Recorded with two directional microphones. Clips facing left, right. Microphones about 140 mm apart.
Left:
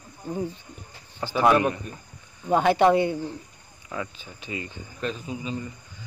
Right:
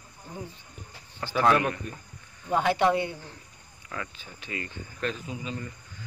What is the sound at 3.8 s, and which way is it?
Speech, 15° left (ahead or behind).